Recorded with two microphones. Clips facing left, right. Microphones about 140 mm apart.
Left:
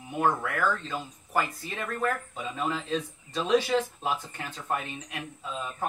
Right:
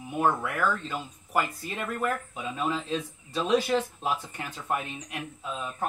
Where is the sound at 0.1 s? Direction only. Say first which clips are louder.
Even; 10° right (ahead or behind).